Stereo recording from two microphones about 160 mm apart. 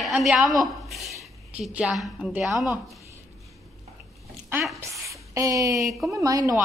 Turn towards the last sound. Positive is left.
turn(degrees=-20)  # may be behind; listen again after turning